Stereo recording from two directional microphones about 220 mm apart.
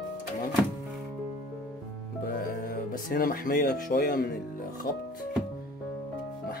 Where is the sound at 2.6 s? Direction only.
45° left (ahead or behind).